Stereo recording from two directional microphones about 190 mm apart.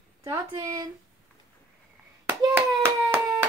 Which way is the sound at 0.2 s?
15° right (ahead or behind).